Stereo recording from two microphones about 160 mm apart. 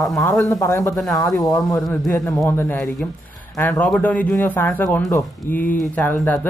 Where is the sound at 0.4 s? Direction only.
20° left (ahead or behind).